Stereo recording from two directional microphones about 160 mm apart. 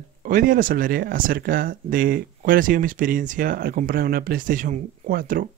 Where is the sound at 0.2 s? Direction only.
55° right (ahead or behind).